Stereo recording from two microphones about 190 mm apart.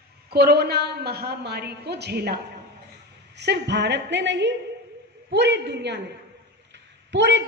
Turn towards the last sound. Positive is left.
turn(degrees=-65)  # may be behind; listen again after turning